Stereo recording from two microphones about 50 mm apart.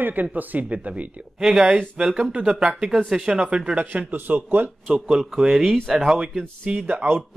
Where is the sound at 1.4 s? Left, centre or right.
Centre.